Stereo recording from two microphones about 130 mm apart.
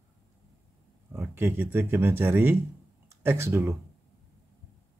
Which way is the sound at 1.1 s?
15° right (ahead or behind).